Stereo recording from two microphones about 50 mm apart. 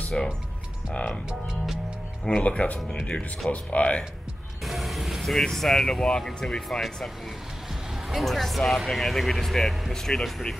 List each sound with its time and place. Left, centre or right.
0.1 s speech: left
2.2 s speech: left
4.6 s mechanisms: centre
5.3 s speech: centre
8.1 s speech: centre